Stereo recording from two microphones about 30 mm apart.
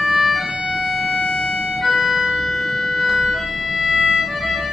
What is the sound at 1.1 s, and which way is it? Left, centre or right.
Vehicle, left.